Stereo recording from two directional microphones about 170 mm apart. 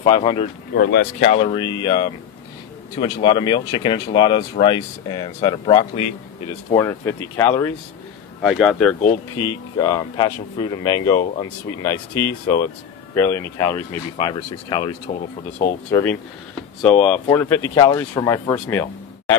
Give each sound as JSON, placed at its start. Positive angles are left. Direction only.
{"t": 0.0, "sound": "speech", "side_deg": 30}
{"t": 0.7, "sound": "speech", "side_deg": 65}
{"t": 1.2, "sound": "speech", "side_deg": 35}
{"t": 8.4, "sound": "speech", "side_deg": 0}
{"t": 9.4, "sound": "speech", "side_deg": 25}
{"t": 14.1, "sound": "speech", "side_deg": 30}
{"t": 15.9, "sound": "speech", "side_deg": 15}